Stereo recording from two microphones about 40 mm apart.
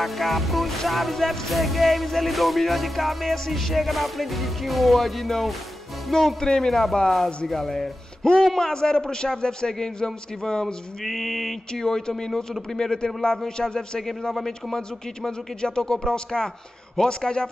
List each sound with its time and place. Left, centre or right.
0.0 s music: centre
6.1 s a man's voice: centre
6.7 s music: centre
7.4 s a man's voice: centre
11.1 s music: centre
11.7 s a man's voice: centre